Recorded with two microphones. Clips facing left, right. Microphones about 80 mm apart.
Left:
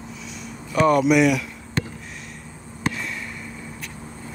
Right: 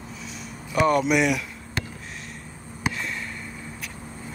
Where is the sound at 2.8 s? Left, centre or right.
Centre.